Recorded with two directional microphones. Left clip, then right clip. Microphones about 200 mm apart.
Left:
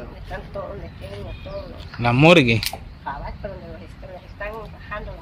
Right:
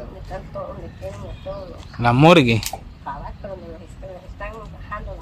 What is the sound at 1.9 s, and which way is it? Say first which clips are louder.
Speech: right 1 dB; 10° right (ahead or behind).